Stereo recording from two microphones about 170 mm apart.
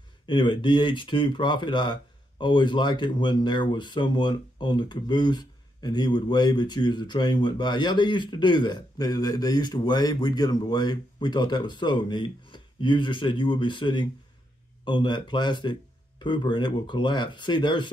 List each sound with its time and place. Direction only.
0.3 s speech: 25° left (ahead or behind)